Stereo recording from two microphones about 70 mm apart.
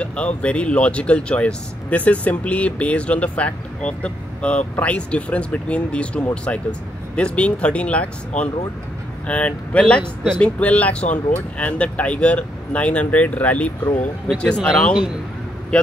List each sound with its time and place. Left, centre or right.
0.0 s speech: centre
15.7 s speech: centre